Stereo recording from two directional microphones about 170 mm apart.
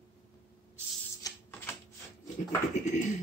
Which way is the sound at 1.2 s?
15° left (ahead or behind).